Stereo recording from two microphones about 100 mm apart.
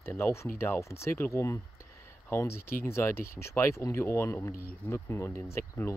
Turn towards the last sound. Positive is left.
turn(degrees=25)  # may be behind; listen again after turning